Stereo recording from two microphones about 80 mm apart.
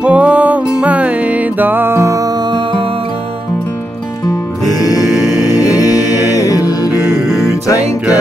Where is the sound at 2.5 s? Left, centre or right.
Right.